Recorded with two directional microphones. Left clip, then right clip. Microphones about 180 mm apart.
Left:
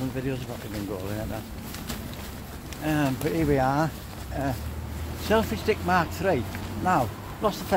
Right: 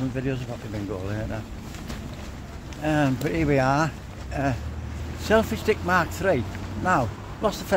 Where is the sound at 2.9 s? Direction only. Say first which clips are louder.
Right 2 dB; 25° right (ahead or behind).